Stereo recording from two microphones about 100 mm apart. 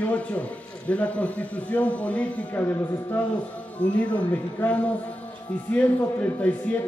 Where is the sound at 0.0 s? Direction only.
15° left (ahead or behind).